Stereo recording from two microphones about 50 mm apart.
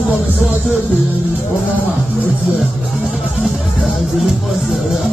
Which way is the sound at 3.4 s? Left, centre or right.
Centre.